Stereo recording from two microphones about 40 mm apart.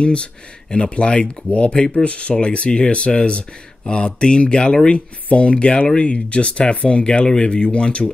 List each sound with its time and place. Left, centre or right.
0.0 s speech: left